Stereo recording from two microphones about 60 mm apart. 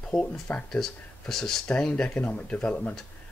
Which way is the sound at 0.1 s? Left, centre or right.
Left.